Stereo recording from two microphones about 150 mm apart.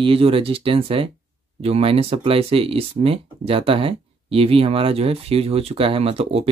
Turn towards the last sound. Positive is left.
turn(degrees=-40)  # may be behind; listen again after turning